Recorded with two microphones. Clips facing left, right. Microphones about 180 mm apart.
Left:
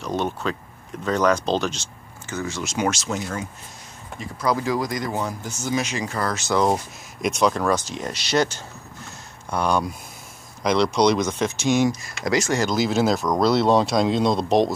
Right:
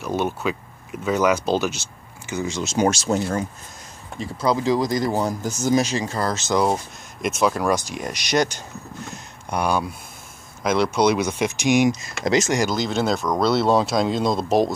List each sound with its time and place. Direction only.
0.0 s speech: 5° right (ahead or behind); by 6.6 s 25° right (ahead or behind)
6.6 s speech: centre (ahead or behind); by 12.6 s 20° right (ahead or behind)
12.7 s speech: 5° left (ahead or behind)